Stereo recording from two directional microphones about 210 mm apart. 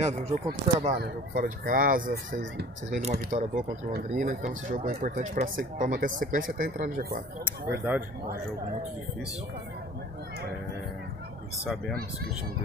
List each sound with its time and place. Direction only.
0.0 s speech: 30° right (ahead or behind)
0.9 s speech: 50° right (ahead or behind)
7.4 s speech: 10° right (ahead or behind)
11.6 s speech: centre (ahead or behind)